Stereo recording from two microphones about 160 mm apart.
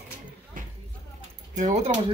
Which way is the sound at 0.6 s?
55° right (ahead or behind).